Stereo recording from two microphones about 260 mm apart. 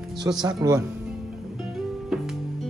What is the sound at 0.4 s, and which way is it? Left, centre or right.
Speech, centre.